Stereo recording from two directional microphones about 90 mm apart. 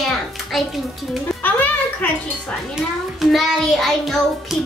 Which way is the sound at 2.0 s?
15° left (ahead or behind).